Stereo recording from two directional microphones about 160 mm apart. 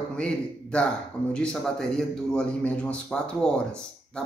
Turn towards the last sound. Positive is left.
turn(degrees=5)  # may be behind; listen again after turning